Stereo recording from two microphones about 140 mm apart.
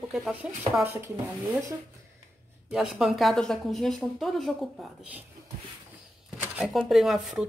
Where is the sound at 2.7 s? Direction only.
5° right (ahead or behind).